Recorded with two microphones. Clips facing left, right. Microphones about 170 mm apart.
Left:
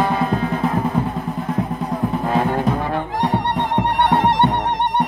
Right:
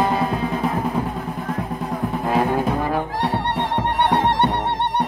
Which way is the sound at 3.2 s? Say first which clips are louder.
Left 2 dB; 20° left (ahead or behind).